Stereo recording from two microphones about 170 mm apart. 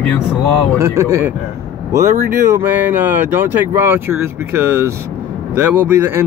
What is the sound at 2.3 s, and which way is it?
Speech, 15° right (ahead or behind).